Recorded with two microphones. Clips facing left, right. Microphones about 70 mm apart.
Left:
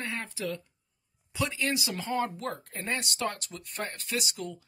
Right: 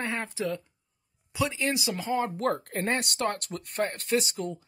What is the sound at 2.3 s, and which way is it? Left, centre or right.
Speech, right.